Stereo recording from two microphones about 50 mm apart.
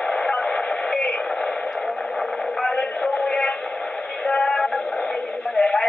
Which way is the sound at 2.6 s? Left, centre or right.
Centre.